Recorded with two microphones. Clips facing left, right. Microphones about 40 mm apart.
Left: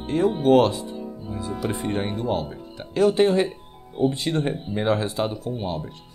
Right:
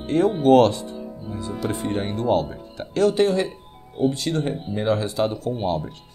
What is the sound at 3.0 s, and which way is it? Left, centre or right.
Speech, left.